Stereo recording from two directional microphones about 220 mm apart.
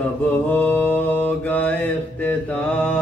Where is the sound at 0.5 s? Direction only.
5° left (ahead or behind).